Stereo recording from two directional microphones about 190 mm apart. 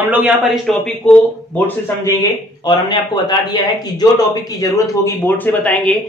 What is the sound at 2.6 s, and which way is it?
A man's voice, 20° left (ahead or behind).